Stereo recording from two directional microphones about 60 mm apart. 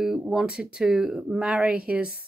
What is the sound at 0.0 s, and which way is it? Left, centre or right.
Speech, centre.